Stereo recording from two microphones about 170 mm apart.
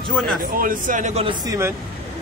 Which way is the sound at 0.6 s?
50° right (ahead or behind).